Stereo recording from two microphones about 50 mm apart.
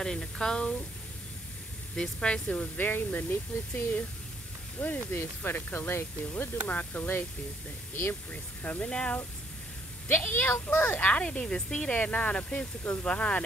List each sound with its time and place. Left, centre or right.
0.0 s speech: centre
2.0 s speech: centre
2.8 s speech: left
6.7 s speech: left
8.8 s speech: left
10.0 s speech: left
10.9 s speech: left
11.2 s speech: centre